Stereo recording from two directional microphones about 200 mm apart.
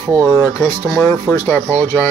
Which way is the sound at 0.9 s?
15° left (ahead or behind).